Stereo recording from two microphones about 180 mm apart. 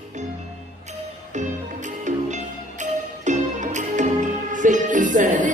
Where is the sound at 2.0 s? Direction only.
40° right (ahead or behind).